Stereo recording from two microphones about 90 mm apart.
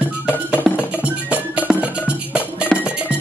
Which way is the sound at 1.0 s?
15° right (ahead or behind).